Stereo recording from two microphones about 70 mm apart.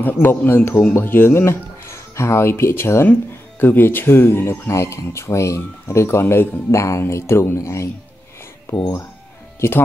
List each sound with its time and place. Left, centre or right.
0.0 s speech: left